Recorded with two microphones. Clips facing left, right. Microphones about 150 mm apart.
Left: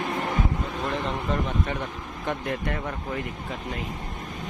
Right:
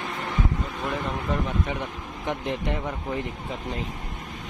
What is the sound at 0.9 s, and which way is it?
Speech, 5° right (ahead or behind).